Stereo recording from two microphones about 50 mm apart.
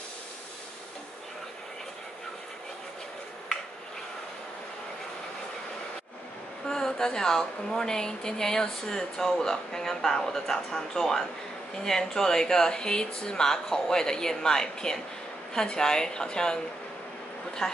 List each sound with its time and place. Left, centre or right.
6.7 s speech: centre